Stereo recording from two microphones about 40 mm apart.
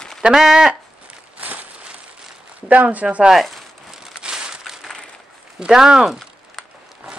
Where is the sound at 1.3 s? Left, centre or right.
Right.